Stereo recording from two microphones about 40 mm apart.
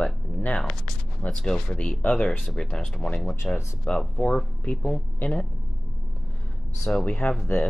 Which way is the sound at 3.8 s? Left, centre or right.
Left.